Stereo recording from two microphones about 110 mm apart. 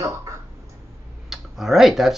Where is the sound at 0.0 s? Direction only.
30° right (ahead or behind).